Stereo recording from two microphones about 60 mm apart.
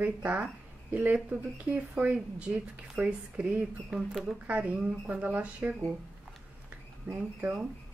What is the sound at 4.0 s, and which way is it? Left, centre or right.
Speech, centre.